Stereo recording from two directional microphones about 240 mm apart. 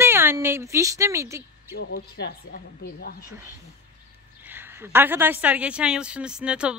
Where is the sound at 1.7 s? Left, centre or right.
Left.